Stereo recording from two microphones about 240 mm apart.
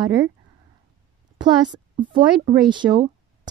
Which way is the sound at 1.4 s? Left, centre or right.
Centre.